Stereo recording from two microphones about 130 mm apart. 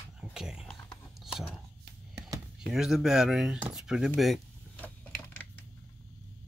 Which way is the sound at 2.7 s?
5° right (ahead or behind).